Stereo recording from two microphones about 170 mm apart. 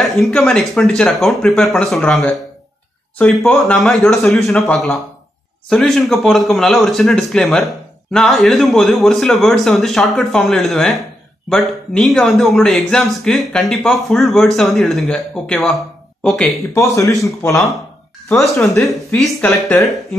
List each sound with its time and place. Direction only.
0.0 s speech: centre (ahead or behind)
16.7 s a man's voice: 20° left (ahead or behind)
18.8 s speech: centre (ahead or behind)